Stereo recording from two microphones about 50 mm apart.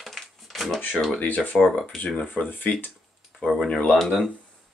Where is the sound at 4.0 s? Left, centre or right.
Centre.